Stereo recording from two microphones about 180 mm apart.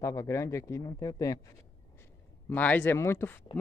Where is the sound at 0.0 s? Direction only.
15° left (ahead or behind).